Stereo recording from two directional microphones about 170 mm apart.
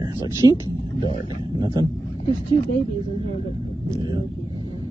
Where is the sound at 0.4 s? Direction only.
20° right (ahead or behind).